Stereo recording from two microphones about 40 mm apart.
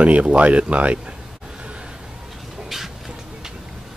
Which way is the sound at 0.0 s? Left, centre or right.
Right.